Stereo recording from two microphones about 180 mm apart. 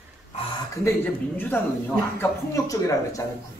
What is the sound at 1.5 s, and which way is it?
Speech, 10° left (ahead or behind).